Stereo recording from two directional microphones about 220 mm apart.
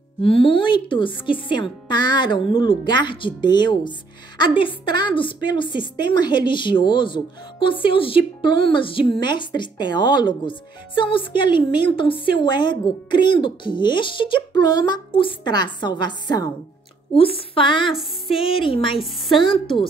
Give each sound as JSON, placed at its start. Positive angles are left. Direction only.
{"t": 0.2, "sound": "a woman's voice", "side_deg": 25}